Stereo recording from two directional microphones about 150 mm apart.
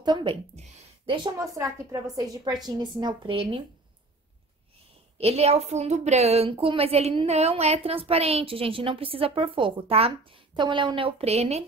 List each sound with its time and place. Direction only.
0.0 s a woman's voice: 30° right (ahead or behind)
0.6 s a sound: 45° right (ahead or behind)
1.3 s a woman's voice: 20° right (ahead or behind); by 3.6 s 35° right (ahead or behind)
5.1 s a woman's voice: 40° right (ahead or behind)